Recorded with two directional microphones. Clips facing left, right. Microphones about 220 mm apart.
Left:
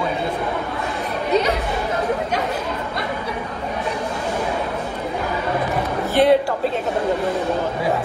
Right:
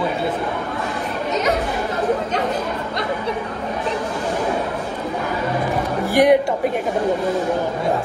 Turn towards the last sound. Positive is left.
turn(degrees=-15)  # may be behind; listen again after turning